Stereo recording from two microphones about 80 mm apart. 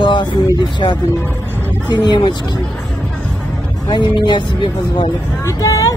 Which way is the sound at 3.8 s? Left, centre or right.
Left.